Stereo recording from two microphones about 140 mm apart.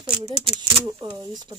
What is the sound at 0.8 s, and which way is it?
Speech, 30° right (ahead or behind).